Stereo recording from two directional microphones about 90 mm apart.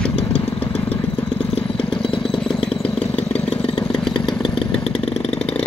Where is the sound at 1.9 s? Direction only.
75° left (ahead or behind).